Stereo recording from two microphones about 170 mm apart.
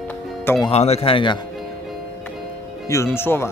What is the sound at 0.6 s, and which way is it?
Speech, 40° left (ahead or behind).